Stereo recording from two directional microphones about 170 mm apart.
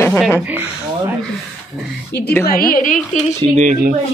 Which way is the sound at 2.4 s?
60° left (ahead or behind).